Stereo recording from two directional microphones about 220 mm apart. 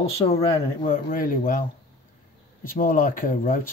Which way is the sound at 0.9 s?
40° left (ahead or behind).